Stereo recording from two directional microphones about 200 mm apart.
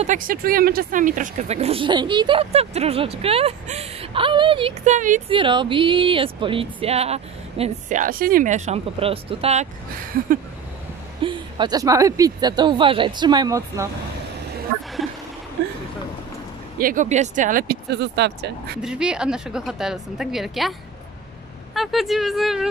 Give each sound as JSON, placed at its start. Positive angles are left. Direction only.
{"t": 0.0, "sound": "speech", "side_deg": -40}
{"t": 5.3, "sound": "speech", "side_deg": -25}
{"t": 11.2, "sound": "speech", "side_deg": -25}
{"t": 16.7, "sound": "speech", "side_deg": -45}
{"t": 18.8, "sound": "a woman's voice", "side_deg": -5}
{"t": 21.7, "sound": "a woman's voice", "side_deg": 0}